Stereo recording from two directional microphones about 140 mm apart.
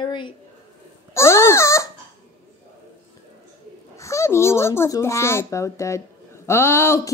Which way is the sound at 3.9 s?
20° left (ahead or behind).